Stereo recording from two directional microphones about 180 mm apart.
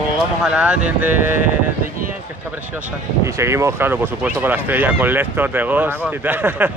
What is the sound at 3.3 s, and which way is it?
Speech, 15° right (ahead or behind).